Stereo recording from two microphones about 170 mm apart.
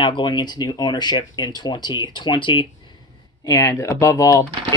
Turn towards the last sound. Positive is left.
turn(degrees=15)  # may be behind; listen again after turning